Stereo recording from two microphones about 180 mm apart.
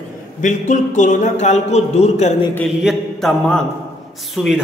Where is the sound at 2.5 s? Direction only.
Centre (ahead or behind).